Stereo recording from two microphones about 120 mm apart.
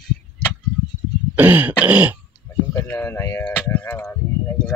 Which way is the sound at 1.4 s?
15° right (ahead or behind).